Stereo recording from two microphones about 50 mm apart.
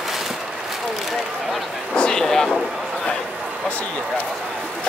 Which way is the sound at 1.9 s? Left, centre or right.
Centre.